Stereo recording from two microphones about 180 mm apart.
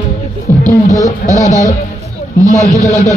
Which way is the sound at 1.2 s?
55° left (ahead or behind).